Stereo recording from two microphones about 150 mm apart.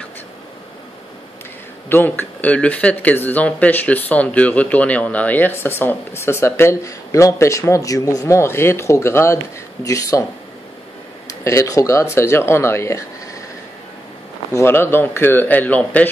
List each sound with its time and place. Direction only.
1.9 s speech: 15° left (ahead or behind)
11.2 s speech: 20° left (ahead or behind)
14.5 s speech: 15° left (ahead or behind)